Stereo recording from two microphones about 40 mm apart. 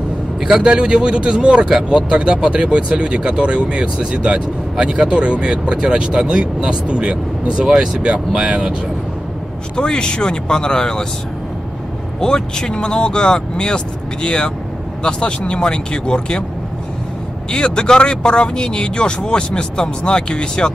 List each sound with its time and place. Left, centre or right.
0.6 s speech: right
9.8 s speech: left
12.2 s speech: centre
17.5 s speech: centre